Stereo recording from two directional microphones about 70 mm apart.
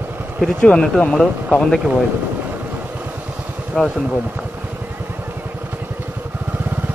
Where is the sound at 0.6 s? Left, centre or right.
Centre.